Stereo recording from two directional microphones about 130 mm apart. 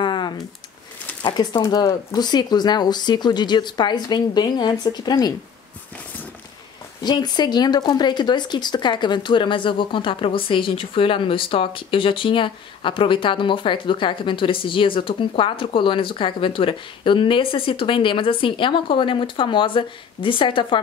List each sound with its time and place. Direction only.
0.0 s a sound: 35° left (ahead or behind)
1.2 s speech: 35° left (ahead or behind)
7.0 s speech: 35° left (ahead or behind)